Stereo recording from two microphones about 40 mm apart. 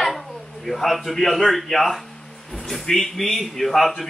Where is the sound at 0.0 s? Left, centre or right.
Centre.